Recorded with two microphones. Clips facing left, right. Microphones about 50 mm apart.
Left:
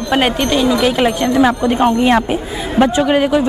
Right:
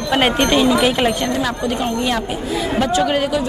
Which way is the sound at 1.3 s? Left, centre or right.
Left.